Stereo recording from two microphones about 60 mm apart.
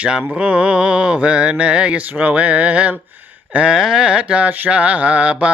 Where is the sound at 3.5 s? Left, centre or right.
Right.